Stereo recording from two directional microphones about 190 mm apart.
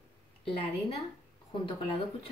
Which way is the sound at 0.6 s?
30° left (ahead or behind).